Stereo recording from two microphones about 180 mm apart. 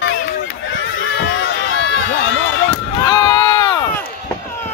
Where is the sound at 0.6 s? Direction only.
85° left.